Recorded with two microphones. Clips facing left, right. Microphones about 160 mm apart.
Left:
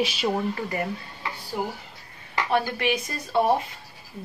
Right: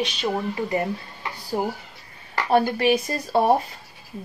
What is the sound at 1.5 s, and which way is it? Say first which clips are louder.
Speech: right 6 dB; 35° right (ahead or behind).